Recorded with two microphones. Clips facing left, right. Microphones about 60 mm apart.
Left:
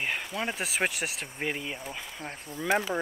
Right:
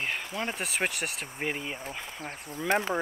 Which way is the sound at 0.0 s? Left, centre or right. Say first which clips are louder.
Left 1 dB; centre.